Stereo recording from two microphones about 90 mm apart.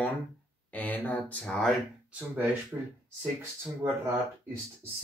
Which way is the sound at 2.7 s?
20° right (ahead or behind).